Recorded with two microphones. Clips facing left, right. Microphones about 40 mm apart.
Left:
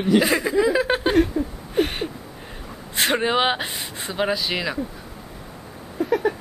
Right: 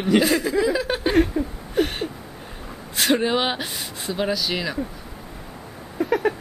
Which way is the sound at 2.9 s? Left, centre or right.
Left.